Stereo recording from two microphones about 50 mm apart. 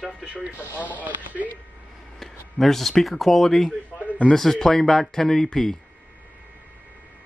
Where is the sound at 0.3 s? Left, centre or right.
Right.